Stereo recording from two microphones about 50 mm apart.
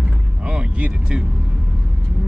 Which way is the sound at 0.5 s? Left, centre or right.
Right.